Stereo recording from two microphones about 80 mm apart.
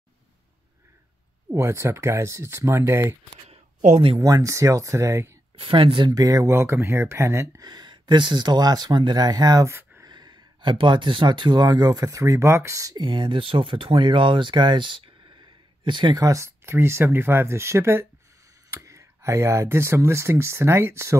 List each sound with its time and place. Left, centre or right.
1.5 s speech: right
4.2 s speech: right
5.6 s speech: right
6.1 s speech: right
6.5 s speech: right
7.5 s speech: right
9.7 s a sound: right
10.0 s speech: right
12.9 s speech: right
16.2 s speech: right